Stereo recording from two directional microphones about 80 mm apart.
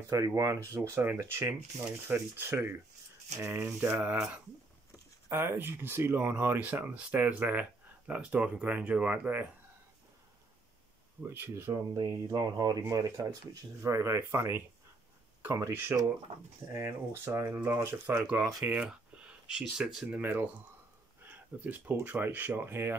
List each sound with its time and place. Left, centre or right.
0.3 s speech: right
3.9 s speech: centre
11.2 s speech: right
11.7 s speech: right
13.7 s speech: right
18.7 s speech: centre
20.2 s speech: right